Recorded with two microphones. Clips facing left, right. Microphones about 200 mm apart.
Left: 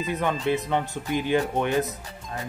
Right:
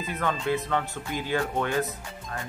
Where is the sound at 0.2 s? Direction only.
20° left (ahead or behind).